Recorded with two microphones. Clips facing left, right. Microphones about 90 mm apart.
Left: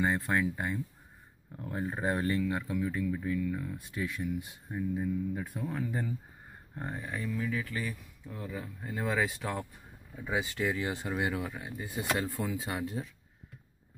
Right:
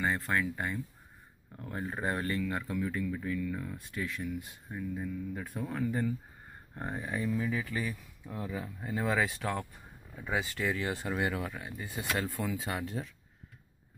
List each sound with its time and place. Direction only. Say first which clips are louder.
0.0 s speech: left 2 dB; 20° left (ahead or behind)
5.4 s speech: right 1 dB; centre (ahead or behind)
6.9 s speech: right 3 dB; 15° right (ahead or behind); by 9.7 s 5° left (ahead or behind)
10.3 s speech: left 1 dB; 20° left (ahead or behind)